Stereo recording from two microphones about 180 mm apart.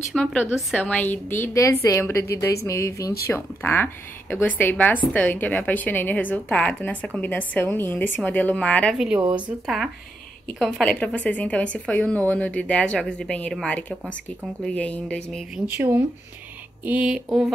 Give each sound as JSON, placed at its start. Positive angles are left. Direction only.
{"t": 0.1, "sound": "a woman's voice", "side_deg": 5}
{"t": 10.6, "sound": "a woman's voice", "side_deg": 5}
{"t": 15.6, "sound": "speech", "side_deg": -10}